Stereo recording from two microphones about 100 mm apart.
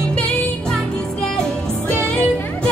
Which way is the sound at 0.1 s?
10° left (ahead or behind).